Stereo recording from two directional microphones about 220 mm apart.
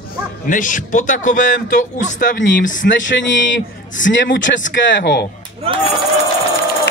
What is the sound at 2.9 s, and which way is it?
Speech, 55° left (ahead or behind).